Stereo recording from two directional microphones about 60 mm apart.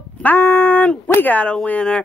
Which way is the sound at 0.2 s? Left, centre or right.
Left.